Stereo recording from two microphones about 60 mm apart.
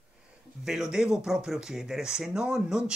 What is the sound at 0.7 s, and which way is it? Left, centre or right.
Speech, centre.